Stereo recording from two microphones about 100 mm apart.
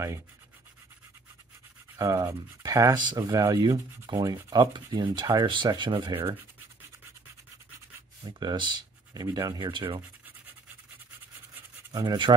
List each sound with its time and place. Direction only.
2.0 s speech: 35° right (ahead or behind)
3.0 s sanding: 45° right (ahead or behind)
8.4 s speech: 50° right (ahead or behind)
9.7 s sanding: 55° right (ahead or behind)
12.1 s sanding: 45° right (ahead or behind)